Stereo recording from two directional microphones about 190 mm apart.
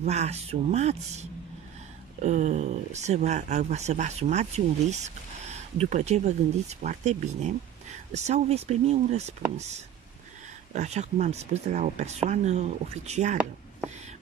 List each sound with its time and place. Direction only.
0.0 s speech: 35° right (ahead or behind)